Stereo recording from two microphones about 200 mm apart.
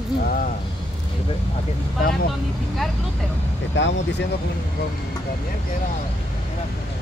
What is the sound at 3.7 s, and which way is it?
Speech, 65° left (ahead or behind).